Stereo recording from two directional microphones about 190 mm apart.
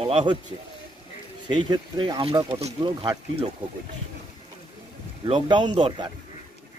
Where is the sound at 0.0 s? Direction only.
30° right (ahead or behind).